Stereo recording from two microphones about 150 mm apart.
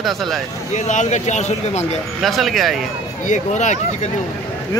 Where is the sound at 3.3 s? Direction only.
55° left (ahead or behind).